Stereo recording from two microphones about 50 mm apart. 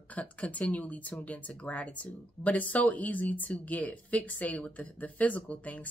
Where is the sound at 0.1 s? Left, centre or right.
Left.